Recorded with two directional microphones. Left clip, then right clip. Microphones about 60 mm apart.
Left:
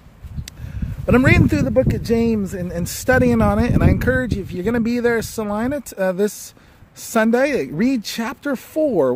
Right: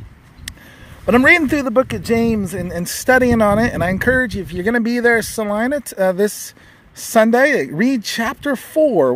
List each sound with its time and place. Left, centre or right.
1.0 s speech: centre